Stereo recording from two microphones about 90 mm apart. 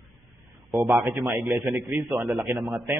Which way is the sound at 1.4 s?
30° right (ahead or behind).